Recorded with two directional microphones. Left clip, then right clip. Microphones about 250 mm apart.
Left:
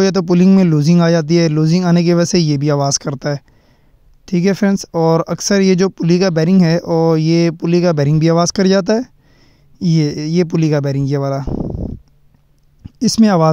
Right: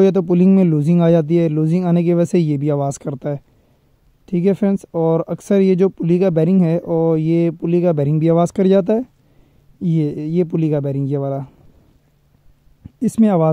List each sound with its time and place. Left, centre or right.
0.0 s speech: left
13.0 s speech: left